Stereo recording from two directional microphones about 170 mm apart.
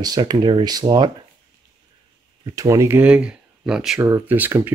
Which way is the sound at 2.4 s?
20° right (ahead or behind).